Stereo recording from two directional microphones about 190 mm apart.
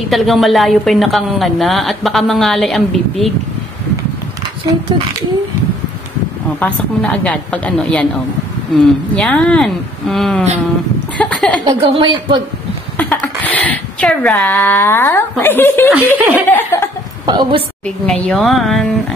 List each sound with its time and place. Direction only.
0.1 s a woman's voice: centre (ahead or behind)
6.6 s a woman's voice: 5° left (ahead or behind)
11.6 s a woman's voice: 25° right (ahead or behind)
12.9 s speech: 5° left (ahead or behind)
16.2 s laughter: 10° right (ahead or behind)
16.4 s speech: 10° left (ahead or behind)
17.3 s a woman's voice: 25° right (ahead or behind)
17.8 s a woman's voice: 5° left (ahead or behind)